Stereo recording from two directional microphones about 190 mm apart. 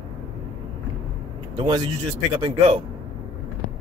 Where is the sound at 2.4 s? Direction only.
30° right (ahead or behind).